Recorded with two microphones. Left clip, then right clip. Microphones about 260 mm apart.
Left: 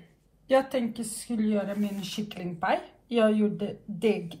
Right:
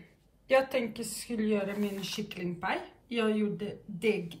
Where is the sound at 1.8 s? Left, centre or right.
Right.